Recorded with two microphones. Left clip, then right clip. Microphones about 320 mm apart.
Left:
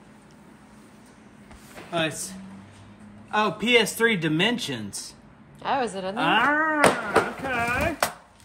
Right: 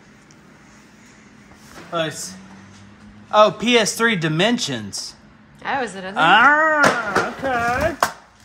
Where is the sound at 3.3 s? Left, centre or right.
Right.